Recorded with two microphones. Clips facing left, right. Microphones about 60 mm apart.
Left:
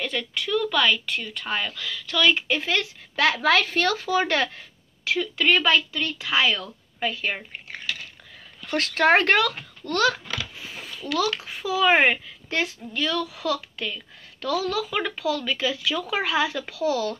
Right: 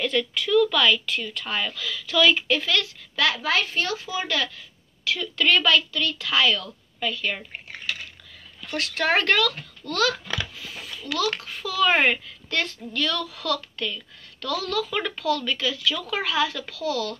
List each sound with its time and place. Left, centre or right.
0.0 s speech: centre
2.6 s a woman's voice: left
3.4 s a woman's voice: left
8.6 s speech: left
9.8 s speech: centre
10.6 s a sound: left
11.3 s a woman's voice: centre
15.6 s a woman's voice: left